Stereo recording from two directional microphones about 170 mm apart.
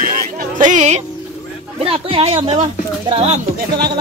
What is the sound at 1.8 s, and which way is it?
Speech, 35° right (ahead or behind).